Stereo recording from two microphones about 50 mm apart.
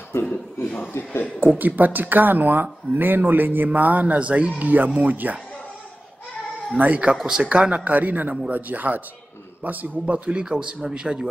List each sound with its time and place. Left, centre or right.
0.2 s a sound: left
1.0 s speech: left
1.6 s speech: right
6.8 s speech: right
10.1 s speech: right